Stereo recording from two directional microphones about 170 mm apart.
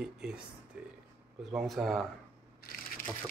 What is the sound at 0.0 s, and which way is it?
Speech, 5° right (ahead or behind).